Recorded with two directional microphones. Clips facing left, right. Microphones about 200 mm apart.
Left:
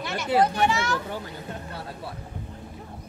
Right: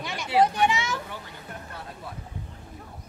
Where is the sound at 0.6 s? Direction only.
15° right (ahead or behind).